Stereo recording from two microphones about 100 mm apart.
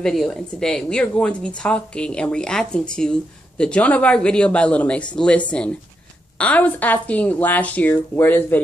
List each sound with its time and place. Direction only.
0.0 s speech: centre (ahead or behind); by 8.5 s 20° left (ahead or behind)